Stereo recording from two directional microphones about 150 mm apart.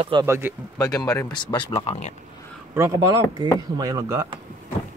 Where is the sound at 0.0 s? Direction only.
30° right (ahead or behind).